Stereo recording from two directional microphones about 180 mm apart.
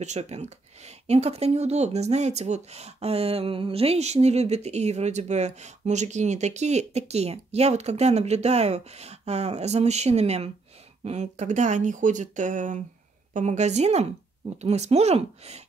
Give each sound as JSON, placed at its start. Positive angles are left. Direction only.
{"t": 0.0, "sound": "speech", "side_deg": -40}